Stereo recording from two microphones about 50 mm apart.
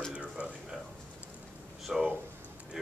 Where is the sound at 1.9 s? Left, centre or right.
Centre.